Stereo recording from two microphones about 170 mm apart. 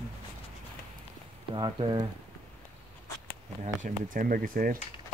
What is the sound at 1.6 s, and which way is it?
Speech, 30° right (ahead or behind).